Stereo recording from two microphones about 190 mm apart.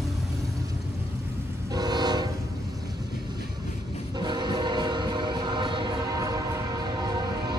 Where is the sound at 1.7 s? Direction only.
20° right (ahead or behind).